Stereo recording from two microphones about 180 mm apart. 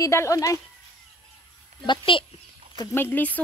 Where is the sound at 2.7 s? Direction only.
20° left (ahead or behind).